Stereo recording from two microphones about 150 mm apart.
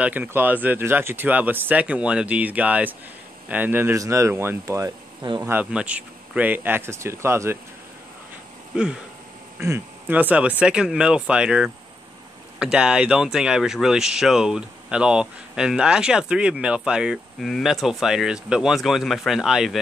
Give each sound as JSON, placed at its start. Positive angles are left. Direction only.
{"t": 0.0, "sound": "speech", "side_deg": -10}
{"t": 5.5, "sound": "speech", "side_deg": -10}
{"t": 8.7, "sound": "speech", "side_deg": -5}